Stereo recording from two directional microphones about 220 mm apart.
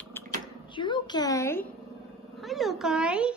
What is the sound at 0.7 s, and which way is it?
Speech, 20° left (ahead or behind).